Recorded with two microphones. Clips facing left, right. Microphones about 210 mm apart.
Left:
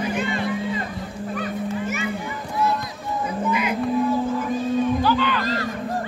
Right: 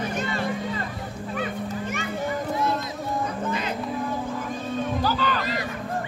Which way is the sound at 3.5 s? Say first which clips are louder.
Left 5 dB; 10° left (ahead or behind).